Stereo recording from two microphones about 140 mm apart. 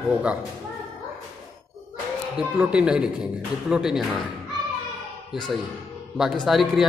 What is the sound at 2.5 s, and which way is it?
A man's voice, 5° right (ahead or behind).